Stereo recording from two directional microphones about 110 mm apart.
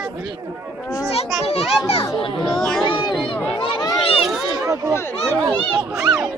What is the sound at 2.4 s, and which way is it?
Speech, 5° left (ahead or behind).